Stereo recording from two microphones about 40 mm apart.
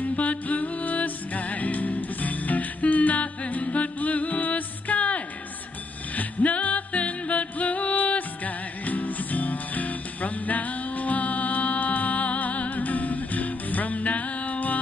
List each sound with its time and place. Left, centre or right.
0.0 s music: left